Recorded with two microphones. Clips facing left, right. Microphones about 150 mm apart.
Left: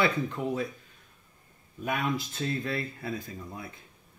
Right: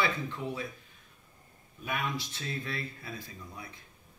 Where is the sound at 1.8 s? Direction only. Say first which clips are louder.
Left 5 dB; 50° left (ahead or behind).